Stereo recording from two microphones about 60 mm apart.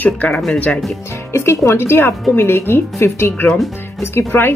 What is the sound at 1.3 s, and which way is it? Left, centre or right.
Speech, left.